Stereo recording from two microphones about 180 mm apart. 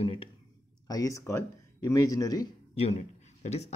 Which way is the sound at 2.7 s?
35° left (ahead or behind).